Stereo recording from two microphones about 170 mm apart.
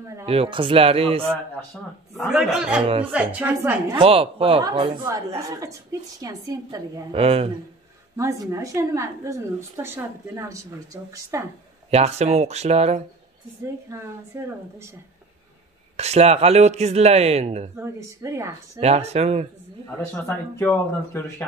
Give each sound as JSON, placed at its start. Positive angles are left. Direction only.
{"t": 0.3, "sound": "speech", "side_deg": -30}
{"t": 2.1, "sound": "a man's voice", "side_deg": 0}
{"t": 2.8, "sound": "speech", "side_deg": -35}
{"t": 3.1, "sound": "a woman's voice", "side_deg": -10}
{"t": 4.0, "sound": "a woman's voice", "side_deg": -35}
{"t": 7.1, "sound": "speech", "side_deg": -35}
{"t": 8.2, "sound": "a woman's voice", "side_deg": -15}
{"t": 11.9, "sound": "speech", "side_deg": -40}
{"t": 13.8, "sound": "a woman's voice", "side_deg": -15}
{"t": 16.0, "sound": "speech", "side_deg": -40}
{"t": 17.7, "sound": "a woman's voice", "side_deg": -15}
{"t": 18.8, "sound": "speech", "side_deg": -40}
{"t": 20.2, "sound": "speech", "side_deg": 15}